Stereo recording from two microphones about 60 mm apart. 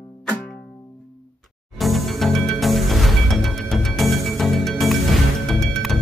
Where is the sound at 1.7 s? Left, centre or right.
Centre.